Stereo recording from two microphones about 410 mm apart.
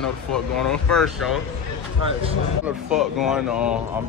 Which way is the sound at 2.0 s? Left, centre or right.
Centre.